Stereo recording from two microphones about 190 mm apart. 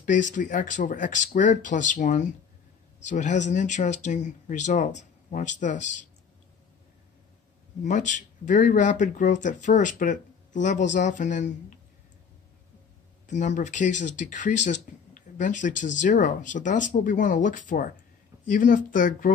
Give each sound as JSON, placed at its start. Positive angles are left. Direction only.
{"t": 0.0, "sound": "speech", "side_deg": 40}
{"t": 7.8, "sound": "speech", "side_deg": 40}
{"t": 13.3, "sound": "speech", "side_deg": 40}